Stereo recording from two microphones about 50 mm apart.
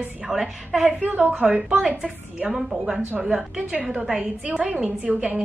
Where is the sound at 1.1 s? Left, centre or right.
Right.